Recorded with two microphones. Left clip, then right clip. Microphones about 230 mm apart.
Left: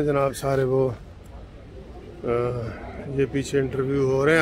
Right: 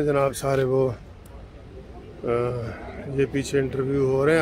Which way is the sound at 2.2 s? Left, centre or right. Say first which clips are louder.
Even; centre.